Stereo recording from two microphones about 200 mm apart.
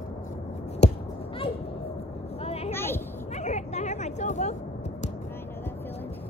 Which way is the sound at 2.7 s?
10° left (ahead or behind).